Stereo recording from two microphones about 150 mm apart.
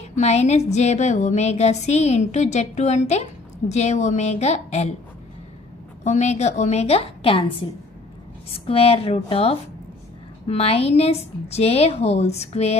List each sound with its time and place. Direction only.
0.0 s speech: 45° left (ahead or behind)
6.0 s speech: 50° left (ahead or behind)
8.5 s speech: 40° left (ahead or behind)